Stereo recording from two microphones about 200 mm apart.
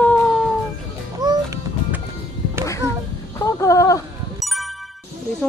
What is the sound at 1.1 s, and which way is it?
Music, 15° right (ahead or behind).